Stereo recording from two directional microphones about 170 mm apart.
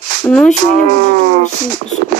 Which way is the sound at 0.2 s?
5° left (ahead or behind).